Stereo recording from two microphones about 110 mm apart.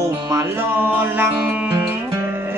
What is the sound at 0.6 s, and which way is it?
Music, 15° right (ahead or behind).